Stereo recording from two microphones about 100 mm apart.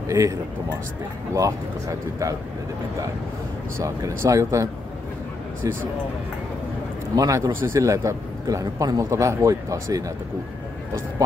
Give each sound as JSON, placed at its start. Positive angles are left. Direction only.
{"t": 0.1, "sound": "a man's voice", "side_deg": -35}
{"t": 3.7, "sound": "a man's voice", "side_deg": -30}
{"t": 7.2, "sound": "a man's voice", "side_deg": -35}